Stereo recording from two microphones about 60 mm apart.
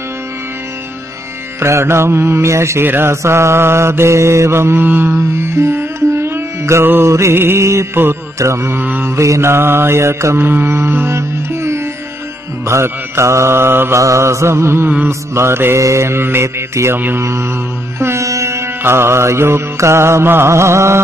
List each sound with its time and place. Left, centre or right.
1.6 s mantra: right
2.8 s mantra: right
3.2 s mantra: right
4.8 s mantra: right
5.1 s music: right
6.8 s mantra: right
7.1 s mantra: right
11.1 s music: right
12.6 s mantra: right
13.9 s mantra: right
17.9 s music: right
18.8 s mantra: right